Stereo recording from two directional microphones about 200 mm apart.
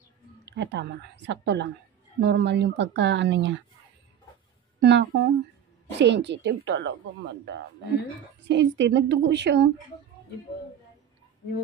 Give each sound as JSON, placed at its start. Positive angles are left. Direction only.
{"t": 0.5, "sound": "speech", "side_deg": -60}
{"t": 4.7, "sound": "a woman's voice", "side_deg": -55}
{"t": 8.5, "sound": "speech", "side_deg": -60}